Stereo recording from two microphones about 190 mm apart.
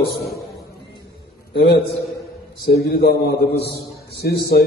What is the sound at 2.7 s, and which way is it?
A man's voice, 60° left (ahead or behind).